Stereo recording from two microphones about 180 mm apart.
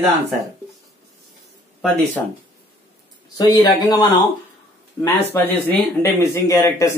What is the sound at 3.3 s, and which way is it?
Speech, 20° left (ahead or behind).